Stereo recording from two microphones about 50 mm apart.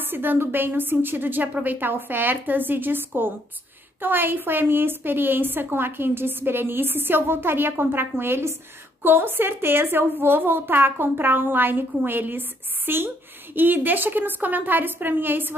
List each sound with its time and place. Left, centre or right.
0.0 s a woman's voice: right